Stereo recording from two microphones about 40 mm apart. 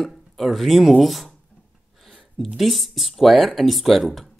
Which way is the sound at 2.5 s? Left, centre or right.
Centre.